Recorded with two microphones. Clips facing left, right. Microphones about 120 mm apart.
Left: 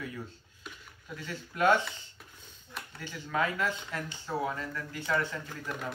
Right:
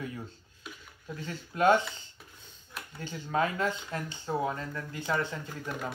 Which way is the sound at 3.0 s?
30° right (ahead or behind).